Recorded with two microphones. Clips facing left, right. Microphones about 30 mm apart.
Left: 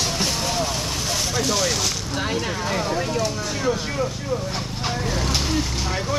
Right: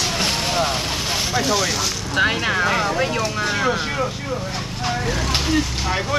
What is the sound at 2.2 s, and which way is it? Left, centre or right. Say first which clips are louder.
Speech: right 9 dB; right.